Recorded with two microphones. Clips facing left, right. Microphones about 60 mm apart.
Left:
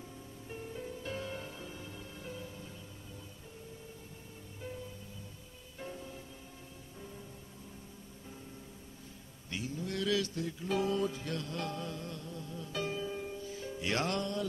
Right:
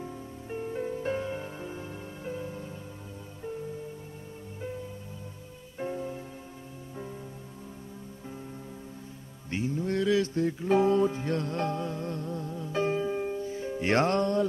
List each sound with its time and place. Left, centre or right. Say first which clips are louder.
0.5 s music: right 10 dB; right
5.8 s music: right 11 dB; right
9.5 s music: right 9 dB; right